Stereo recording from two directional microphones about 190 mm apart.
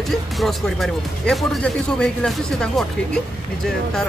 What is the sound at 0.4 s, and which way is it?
Speech, centre (ahead or behind).